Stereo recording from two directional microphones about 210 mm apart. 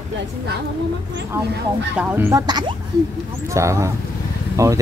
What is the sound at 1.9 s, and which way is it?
Speech, 5° right (ahead or behind).